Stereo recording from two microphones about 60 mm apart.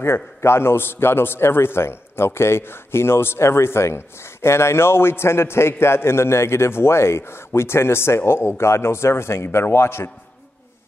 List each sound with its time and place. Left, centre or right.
0.0 s a man's voice: left